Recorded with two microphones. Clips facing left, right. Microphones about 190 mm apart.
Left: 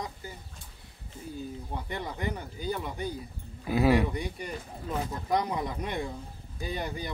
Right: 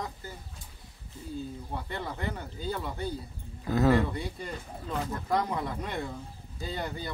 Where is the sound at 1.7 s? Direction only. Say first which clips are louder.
Even; 15° left (ahead or behind).